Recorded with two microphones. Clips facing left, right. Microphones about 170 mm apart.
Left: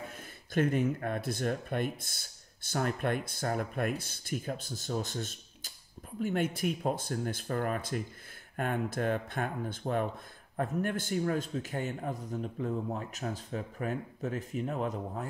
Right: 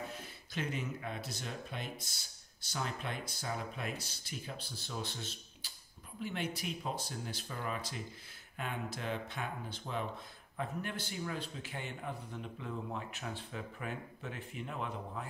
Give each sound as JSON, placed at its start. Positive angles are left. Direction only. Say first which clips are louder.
{"t": 0.1, "sound": "a man's voice", "louder": "left 9 dB", "side_deg": 50}